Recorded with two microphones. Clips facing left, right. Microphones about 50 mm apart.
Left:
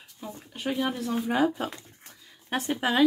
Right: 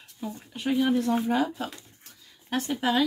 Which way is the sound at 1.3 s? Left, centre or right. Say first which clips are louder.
Left 2 dB; left.